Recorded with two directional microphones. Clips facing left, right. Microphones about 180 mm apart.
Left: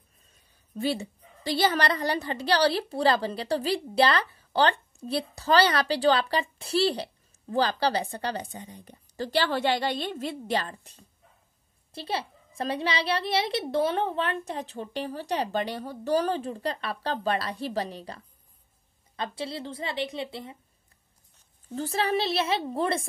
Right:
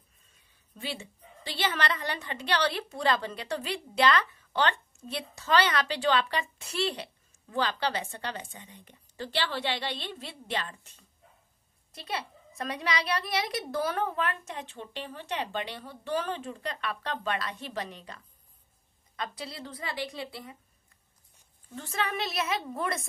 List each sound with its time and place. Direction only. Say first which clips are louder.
0.7 s a woman's voice: left 10 dB; 40° left (ahead or behind); by 20.5 s 20° left (ahead or behind)
21.7 s a woman's voice: left 6 dB; 35° left (ahead or behind)